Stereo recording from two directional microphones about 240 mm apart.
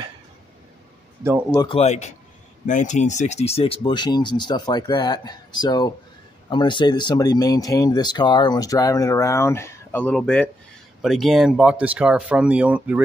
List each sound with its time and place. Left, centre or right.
1.5 s speech: centre